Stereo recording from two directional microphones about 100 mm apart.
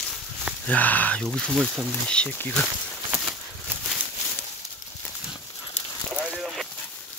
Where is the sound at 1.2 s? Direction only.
5° left (ahead or behind).